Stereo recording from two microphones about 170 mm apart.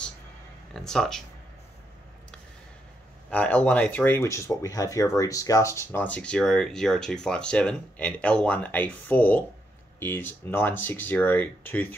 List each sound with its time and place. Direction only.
0.7 s speech: 5° left (ahead or behind)
3.3 s speech: 10° left (ahead or behind)